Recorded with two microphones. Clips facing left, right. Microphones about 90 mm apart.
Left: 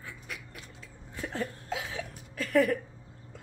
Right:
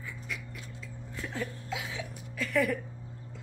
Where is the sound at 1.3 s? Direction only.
40° left (ahead or behind).